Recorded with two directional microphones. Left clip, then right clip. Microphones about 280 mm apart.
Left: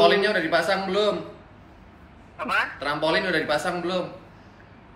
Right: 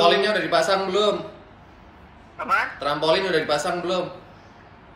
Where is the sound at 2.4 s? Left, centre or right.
Centre.